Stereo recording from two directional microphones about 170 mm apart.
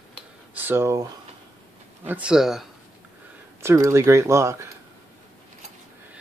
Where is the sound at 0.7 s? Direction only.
15° right (ahead or behind).